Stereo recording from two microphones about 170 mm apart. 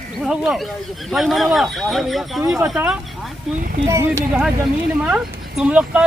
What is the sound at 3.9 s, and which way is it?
Speech, 15° right (ahead or behind).